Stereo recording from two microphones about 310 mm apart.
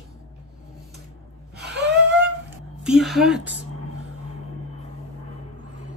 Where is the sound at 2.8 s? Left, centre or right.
Centre.